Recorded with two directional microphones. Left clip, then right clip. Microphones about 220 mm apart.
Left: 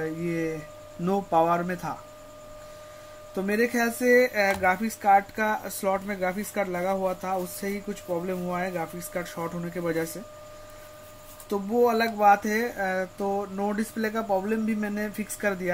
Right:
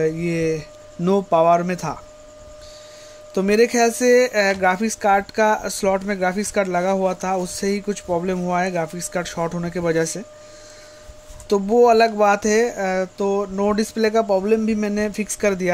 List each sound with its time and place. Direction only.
0.0 s speech: 40° right (ahead or behind)
3.3 s speech: 40° right (ahead or behind)
11.4 s speech: 40° right (ahead or behind)